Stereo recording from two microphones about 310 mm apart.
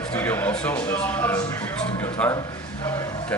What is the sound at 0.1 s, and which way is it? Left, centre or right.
Speech, centre.